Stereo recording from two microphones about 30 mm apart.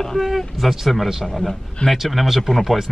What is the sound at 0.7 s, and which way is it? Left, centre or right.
Speech, centre.